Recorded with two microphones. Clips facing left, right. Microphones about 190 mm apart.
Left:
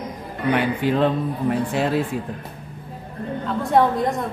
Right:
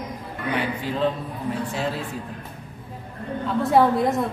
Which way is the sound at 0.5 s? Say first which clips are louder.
Left 6 dB; 65° left (ahead or behind).